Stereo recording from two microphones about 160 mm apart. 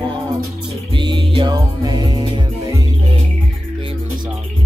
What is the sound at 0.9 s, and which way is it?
Music, 30° right (ahead or behind).